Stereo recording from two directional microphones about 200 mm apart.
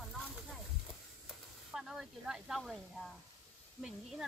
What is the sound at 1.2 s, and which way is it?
Snake, centre (ahead or behind).